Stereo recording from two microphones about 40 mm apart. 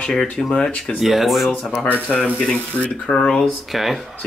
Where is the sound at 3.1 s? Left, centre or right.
Centre.